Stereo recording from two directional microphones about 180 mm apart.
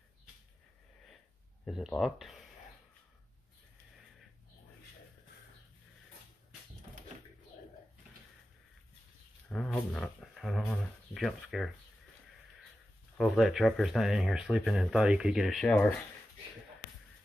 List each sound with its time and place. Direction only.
1.7 s speech: centre (ahead or behind)
9.5 s speech: 5° left (ahead or behind)
13.2 s speech: centre (ahead or behind)